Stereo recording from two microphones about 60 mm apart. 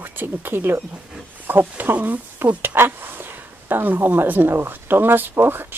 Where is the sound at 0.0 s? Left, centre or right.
Right.